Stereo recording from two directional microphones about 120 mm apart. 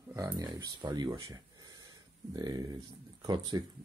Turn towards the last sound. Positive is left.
turn(degrees=-35)  # may be behind; listen again after turning